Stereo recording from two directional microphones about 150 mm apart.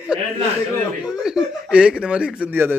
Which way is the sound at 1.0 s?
5° right (ahead or behind).